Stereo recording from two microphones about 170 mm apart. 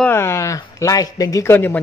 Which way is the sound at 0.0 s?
15° left (ahead or behind).